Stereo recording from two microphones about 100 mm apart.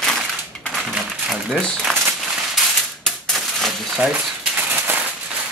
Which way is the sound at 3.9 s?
10° right (ahead or behind).